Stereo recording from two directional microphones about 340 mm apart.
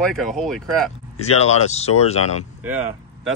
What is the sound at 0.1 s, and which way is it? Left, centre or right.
Speech, centre.